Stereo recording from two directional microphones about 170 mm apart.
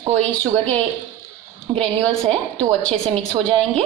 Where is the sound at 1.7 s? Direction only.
35° right (ahead or behind).